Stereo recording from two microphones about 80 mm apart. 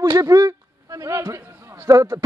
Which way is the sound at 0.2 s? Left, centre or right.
Right.